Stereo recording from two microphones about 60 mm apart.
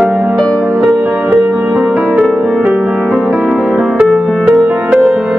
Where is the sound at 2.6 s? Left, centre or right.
Centre.